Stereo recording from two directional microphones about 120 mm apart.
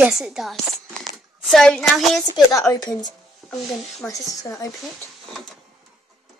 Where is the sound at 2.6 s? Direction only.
30° left (ahead or behind).